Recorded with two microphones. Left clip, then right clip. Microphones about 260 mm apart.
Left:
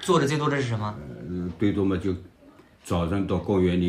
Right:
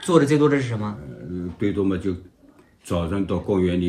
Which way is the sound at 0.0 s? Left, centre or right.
Centre.